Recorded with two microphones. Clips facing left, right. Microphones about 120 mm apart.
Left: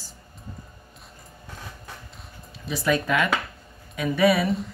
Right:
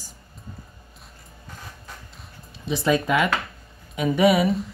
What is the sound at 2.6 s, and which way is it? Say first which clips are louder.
Speech: right 2 dB; 20° right (ahead or behind).